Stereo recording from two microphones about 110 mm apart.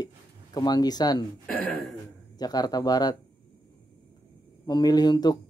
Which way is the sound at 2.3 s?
35° left (ahead or behind).